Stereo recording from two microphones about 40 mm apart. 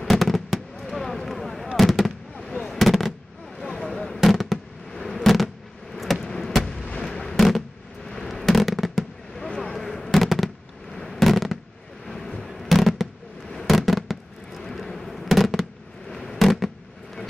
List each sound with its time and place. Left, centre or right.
0.0 s fireworks: centre
0.7 s a sound: centre
1.8 s fireworks: centre
3.1 s fireworks: centre
4.1 s fireworks: centre
6.2 s a sound: centre
9.6 s fireworks: centre
12.1 s a sound: centre
12.4 s fireworks: centre